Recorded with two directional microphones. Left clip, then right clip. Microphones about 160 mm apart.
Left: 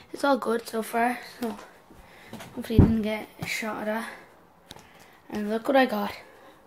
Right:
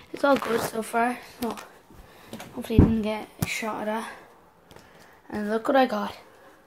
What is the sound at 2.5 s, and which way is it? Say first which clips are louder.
Speech: right 1 dB; 5° left (ahead or behind).